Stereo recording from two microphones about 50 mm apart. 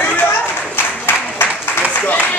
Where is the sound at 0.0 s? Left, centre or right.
Left.